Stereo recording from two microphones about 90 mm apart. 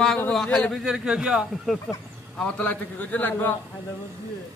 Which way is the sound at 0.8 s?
10° right (ahead or behind).